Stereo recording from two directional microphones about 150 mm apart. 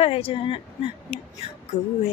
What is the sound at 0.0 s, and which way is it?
Speech, 40° left (ahead or behind).